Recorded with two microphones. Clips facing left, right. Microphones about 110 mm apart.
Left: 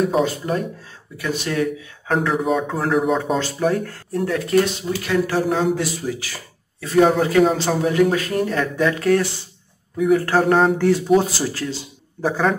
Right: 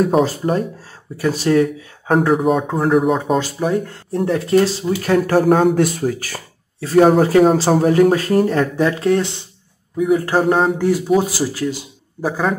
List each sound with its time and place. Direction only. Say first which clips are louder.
0.0 s speech: right 4 dB; 40° right (ahead or behind)
2.7 s speech: right 4 dB; centre (ahead or behind)
3.7 s speech: right 3 dB; 20° right (ahead or behind)
5.0 s speech: right 6 dB; 45° right (ahead or behind); by 9.3 s 25° right (ahead or behind)
10.0 s speech: right 1 dB; 15° right (ahead or behind)